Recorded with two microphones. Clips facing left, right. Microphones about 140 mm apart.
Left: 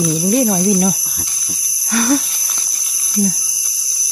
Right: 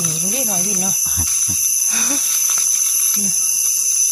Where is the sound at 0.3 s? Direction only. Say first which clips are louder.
Left 12 dB; 60° left (ahead or behind).